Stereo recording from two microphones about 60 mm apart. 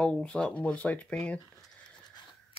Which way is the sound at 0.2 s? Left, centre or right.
Centre.